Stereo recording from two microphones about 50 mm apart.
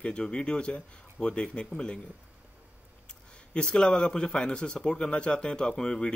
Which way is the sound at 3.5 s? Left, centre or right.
Centre.